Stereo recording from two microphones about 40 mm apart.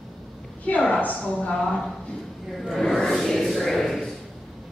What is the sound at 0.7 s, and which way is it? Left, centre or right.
Speech, left.